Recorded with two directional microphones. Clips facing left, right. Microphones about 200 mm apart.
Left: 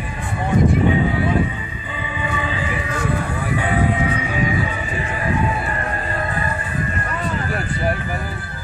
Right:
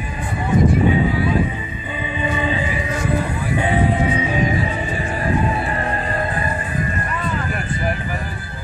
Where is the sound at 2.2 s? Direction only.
20° right (ahead or behind).